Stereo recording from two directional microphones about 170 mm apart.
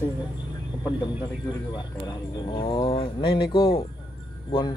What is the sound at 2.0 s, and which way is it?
Speech, 25° left (ahead or behind).